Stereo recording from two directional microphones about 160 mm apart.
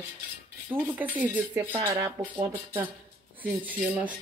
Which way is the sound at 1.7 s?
20° right (ahead or behind).